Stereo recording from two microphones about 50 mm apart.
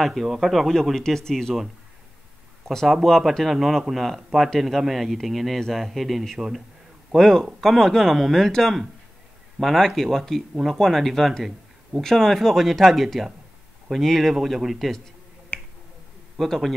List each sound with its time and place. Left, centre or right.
0.0 s speech: centre
2.7 s a man's voice: centre
10.5 s speech: centre
15.5 s finger snapping: left
16.3 s speech: centre